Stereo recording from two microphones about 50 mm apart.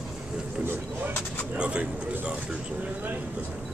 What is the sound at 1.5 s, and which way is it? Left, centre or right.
Speech, right.